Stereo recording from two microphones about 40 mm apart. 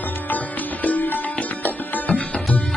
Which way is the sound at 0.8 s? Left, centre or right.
Left.